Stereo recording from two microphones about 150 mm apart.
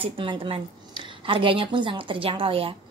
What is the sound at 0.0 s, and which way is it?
A woman's voice, 35° right (ahead or behind).